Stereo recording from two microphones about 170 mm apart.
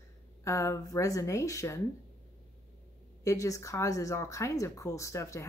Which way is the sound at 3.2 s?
20° left (ahead or behind).